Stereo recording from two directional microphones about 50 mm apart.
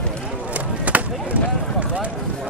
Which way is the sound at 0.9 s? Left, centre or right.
Right.